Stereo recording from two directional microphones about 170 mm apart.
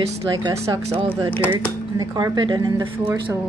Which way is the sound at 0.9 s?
30° right (ahead or behind).